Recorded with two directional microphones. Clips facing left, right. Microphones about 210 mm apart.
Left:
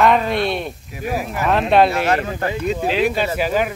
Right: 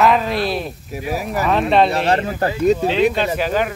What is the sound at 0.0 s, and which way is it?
Speech, centre (ahead or behind).